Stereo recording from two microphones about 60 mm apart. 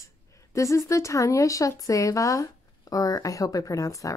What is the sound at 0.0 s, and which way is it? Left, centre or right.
Speech, left.